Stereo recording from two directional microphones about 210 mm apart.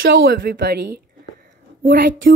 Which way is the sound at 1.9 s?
60° right (ahead or behind).